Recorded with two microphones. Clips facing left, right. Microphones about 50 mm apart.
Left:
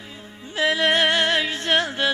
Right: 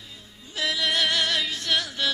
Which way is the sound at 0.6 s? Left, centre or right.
Left.